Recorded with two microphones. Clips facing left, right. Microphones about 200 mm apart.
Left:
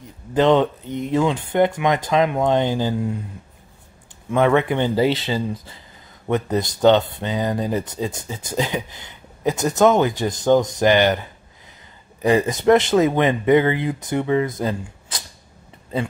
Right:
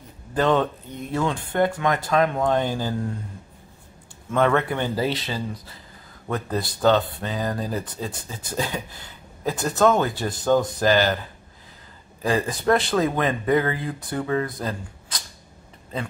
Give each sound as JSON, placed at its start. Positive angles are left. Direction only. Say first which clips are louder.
{"t": 0.3, "sound": "speech", "louder": "left 5 dB", "side_deg": 20}
{"t": 4.3, "sound": "speech", "louder": "left 4 dB", "side_deg": 15}
{"t": 12.2, "sound": "speech", "louder": "left 6 dB", "side_deg": 20}